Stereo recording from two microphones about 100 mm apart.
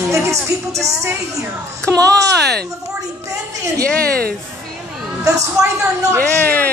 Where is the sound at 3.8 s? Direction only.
10° left (ahead or behind).